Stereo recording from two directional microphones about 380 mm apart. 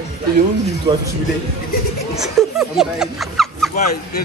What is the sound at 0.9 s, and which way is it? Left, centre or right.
Speech, centre.